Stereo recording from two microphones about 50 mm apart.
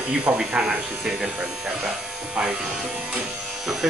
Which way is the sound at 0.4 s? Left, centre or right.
Centre.